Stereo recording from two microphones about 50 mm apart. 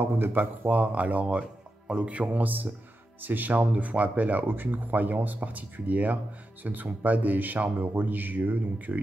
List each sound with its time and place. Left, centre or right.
0.0 s speech: right